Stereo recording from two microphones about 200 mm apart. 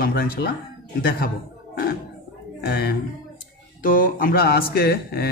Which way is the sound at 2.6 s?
55° left (ahead or behind).